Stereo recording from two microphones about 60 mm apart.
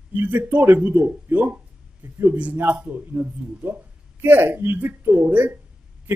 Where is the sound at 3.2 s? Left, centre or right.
Centre.